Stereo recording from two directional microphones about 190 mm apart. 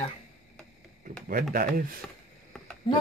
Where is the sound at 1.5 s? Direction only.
45° right (ahead or behind).